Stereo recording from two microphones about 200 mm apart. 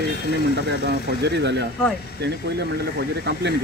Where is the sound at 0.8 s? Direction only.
55° right (ahead or behind).